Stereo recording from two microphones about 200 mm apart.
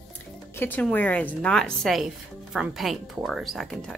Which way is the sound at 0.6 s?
10° left (ahead or behind).